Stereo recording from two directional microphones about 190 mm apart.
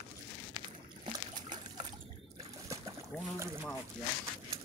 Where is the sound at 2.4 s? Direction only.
15° right (ahead or behind).